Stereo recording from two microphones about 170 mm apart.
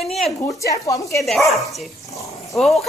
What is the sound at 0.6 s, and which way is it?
Speech, 20° left (ahead or behind).